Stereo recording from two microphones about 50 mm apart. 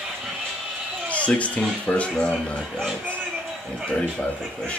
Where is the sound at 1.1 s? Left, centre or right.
Left.